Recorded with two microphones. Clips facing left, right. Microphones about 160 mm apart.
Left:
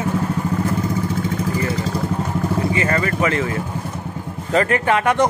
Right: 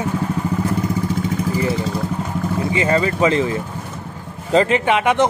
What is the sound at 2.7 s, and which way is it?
Speech, 20° right (ahead or behind).